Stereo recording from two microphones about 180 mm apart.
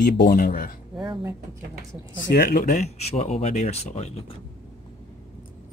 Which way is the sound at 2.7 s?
35° left (ahead or behind).